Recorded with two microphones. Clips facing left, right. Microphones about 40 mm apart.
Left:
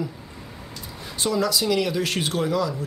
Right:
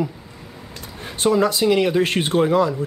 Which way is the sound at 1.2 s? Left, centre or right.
Right.